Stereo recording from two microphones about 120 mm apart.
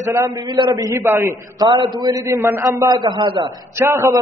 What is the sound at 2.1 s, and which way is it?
Speech, 20° right (ahead or behind).